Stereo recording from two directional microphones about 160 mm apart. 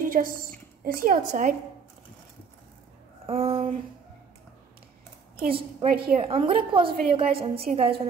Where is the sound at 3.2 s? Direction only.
35° right (ahead or behind).